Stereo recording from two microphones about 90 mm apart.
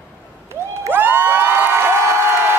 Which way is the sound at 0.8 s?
25° right (ahead or behind).